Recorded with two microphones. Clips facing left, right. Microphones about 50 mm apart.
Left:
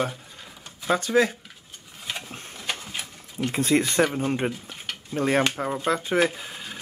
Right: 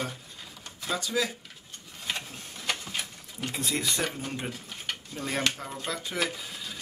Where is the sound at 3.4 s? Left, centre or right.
Left.